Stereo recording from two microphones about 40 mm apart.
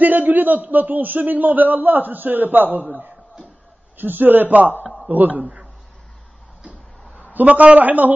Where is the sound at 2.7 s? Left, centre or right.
Right.